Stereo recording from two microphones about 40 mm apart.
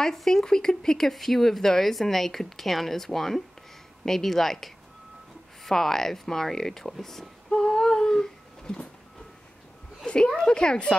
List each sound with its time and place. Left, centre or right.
0.0 s a woman's voice: centre
10.0 s speech: left